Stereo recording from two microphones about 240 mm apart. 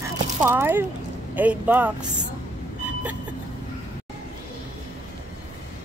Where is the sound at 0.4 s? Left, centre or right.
Centre.